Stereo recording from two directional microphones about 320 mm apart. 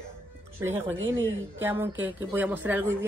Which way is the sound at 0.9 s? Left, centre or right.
Right.